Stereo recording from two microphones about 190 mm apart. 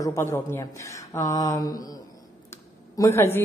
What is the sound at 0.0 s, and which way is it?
A woman's voice, 15° left (ahead or behind).